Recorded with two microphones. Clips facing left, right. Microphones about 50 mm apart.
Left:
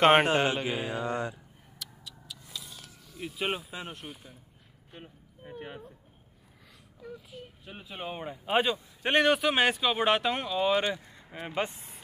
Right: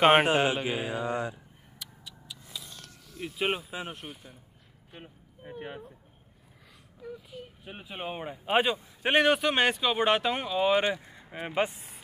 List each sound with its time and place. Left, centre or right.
0.0 s speech: centre
1.8 s a sound: centre
2.4 s a sound: centre
4.9 s speech: centre
7.0 s child singing: centre
7.6 s a man's voice: centre